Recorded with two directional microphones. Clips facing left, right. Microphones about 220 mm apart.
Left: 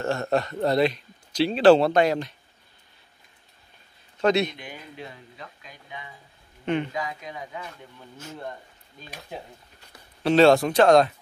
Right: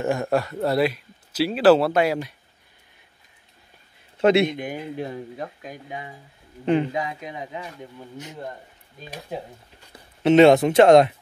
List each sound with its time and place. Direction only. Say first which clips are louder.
0.0 s speech: right 2 dB; 15° right (ahead or behind)
4.2 s speech: right 4 dB; 25° right (ahead or behind)
4.5 s speech: right 11 dB; 50° right (ahead or behind); by 7.7 s 20° right (ahead or behind)
10.2 s speech: right 3 dB; 20° right (ahead or behind)